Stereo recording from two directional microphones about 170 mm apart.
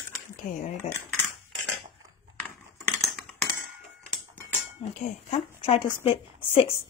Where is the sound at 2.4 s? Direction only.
5° left (ahead or behind).